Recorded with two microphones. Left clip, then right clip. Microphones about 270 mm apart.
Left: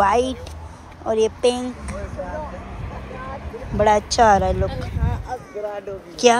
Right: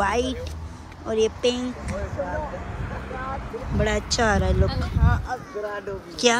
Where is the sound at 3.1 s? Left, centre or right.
Right.